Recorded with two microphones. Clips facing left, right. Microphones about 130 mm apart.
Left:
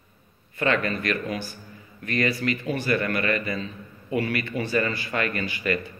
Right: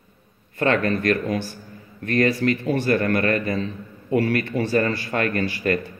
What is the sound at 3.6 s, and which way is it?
Speech, 60° right (ahead or behind).